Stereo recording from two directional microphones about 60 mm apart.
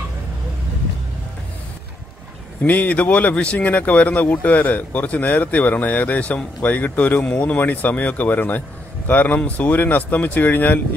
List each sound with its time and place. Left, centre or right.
2.6 s speech: left